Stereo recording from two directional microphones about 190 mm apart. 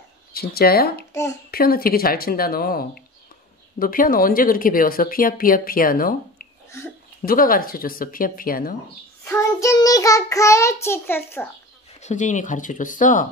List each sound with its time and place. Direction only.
0.3 s speech: 55° left (ahead or behind)
9.2 s child singing: 15° left (ahead or behind)
12.0 s speech: 40° left (ahead or behind)